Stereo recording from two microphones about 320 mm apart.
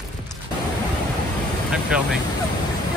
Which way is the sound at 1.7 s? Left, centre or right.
Centre.